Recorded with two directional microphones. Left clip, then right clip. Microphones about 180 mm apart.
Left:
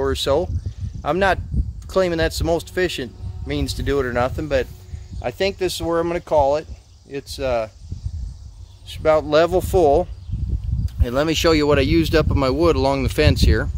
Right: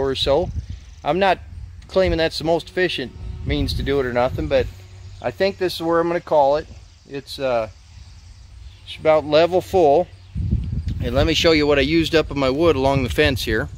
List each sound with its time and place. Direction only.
0.0 s speech: 5° right (ahead or behind); by 7.7 s 20° right (ahead or behind)
8.8 s speech: 10° right (ahead or behind)